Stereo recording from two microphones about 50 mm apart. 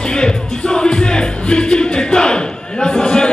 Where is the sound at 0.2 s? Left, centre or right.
Centre.